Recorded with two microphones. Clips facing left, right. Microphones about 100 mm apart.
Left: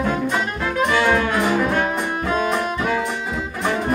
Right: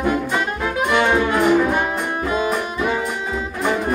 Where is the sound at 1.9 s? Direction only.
Centre (ahead or behind).